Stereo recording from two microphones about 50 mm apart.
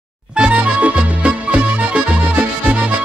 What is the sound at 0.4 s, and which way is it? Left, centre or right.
Music, right.